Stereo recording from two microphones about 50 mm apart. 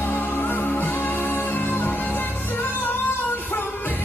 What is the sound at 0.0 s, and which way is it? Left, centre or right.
Music, left.